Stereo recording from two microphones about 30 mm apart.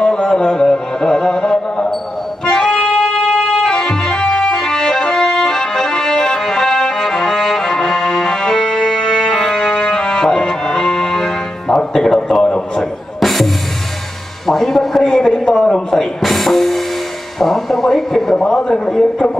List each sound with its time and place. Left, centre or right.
0.0 s music: left
2.9 s music: centre
3.6 s music: centre
4.1 s music: left
4.8 s accordion: left
10.0 s music: centre
13.2 s music: centre
15.0 s a sound: centre
16.2 s music: centre
17.4 s a sound: centre
18.5 s a man's voice: left